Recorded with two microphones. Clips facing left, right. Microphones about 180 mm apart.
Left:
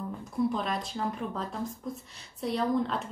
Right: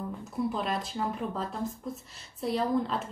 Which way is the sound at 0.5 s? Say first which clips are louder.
Even; centre (ahead or behind).